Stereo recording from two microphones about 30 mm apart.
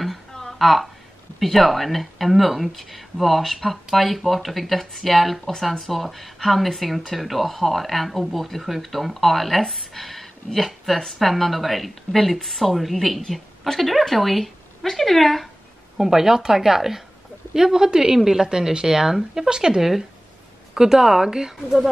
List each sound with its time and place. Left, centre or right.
0.3 s a sound: centre
0.6 s a woman's voice: centre
16.0 s a woman's voice: centre